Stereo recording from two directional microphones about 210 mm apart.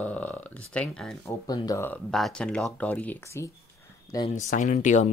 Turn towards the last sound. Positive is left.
turn(degrees=35)  # may be behind; listen again after turning